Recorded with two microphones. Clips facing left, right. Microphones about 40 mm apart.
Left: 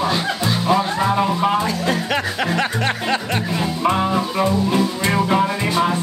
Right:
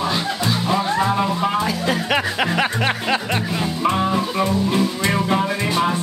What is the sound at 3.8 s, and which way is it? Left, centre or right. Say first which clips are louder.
Music: left 1 dB; centre.